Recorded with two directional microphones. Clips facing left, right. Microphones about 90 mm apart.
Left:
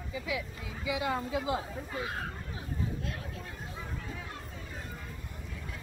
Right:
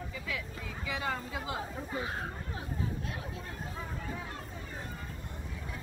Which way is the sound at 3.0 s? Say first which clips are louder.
Even; 20° right (ahead or behind).